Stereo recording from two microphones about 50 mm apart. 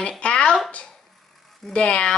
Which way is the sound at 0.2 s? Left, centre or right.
Left.